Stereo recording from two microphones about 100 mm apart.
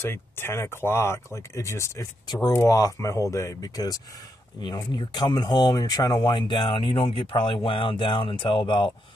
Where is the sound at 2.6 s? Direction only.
35° left (ahead or behind).